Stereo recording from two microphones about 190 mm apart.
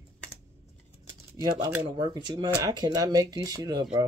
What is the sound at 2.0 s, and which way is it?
Speech, 20° right (ahead or behind).